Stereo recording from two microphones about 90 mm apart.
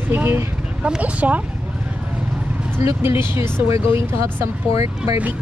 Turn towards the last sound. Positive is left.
turn(degrees=-35)  # may be behind; listen again after turning